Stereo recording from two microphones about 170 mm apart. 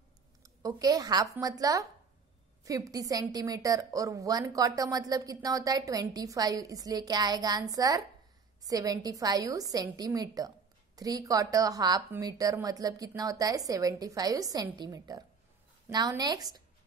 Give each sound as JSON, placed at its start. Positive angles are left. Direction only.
{"t": 0.4, "sound": "a woman's voice", "side_deg": -20}